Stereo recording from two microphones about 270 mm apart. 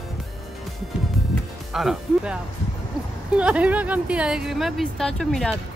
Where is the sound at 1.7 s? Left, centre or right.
Centre.